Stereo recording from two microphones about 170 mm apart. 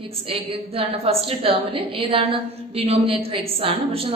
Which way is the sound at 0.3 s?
35° right (ahead or behind).